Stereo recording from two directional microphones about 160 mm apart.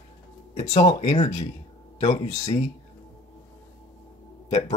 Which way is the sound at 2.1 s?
20° left (ahead or behind).